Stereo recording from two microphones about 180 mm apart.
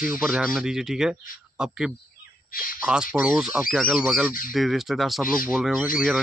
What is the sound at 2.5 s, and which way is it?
Speech, 50° left (ahead or behind).